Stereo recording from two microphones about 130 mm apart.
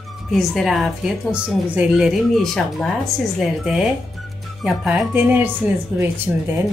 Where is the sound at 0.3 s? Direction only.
Centre (ahead or behind); by 6.5 s 15° right (ahead or behind).